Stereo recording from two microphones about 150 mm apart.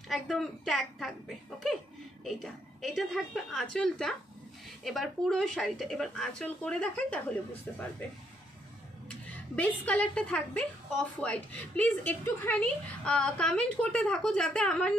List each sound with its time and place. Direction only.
0.1 s a woman's voice: centre (ahead or behind)
9.6 s a woman's voice: 10° left (ahead or behind)